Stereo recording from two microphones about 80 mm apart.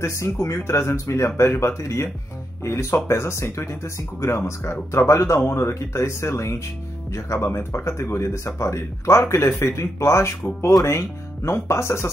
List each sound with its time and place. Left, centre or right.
0.0 s speech: left